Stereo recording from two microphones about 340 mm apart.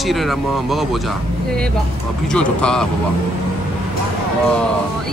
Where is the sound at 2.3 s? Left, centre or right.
Centre.